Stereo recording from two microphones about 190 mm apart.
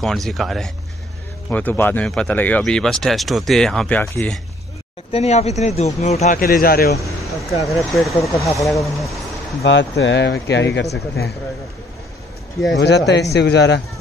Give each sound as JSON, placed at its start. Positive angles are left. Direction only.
{"t": 0.0, "sound": "speech", "side_deg": 0}
{"t": 5.1, "sound": "speech", "side_deg": 35}
{"t": 6.4, "sound": "a man's voice", "side_deg": 50}
{"t": 7.2, "sound": "speech", "side_deg": 0}
{"t": 8.1, "sound": "speech", "side_deg": 15}
{"t": 9.6, "sound": "speech", "side_deg": 65}
{"t": 12.7, "sound": "speech", "side_deg": 65}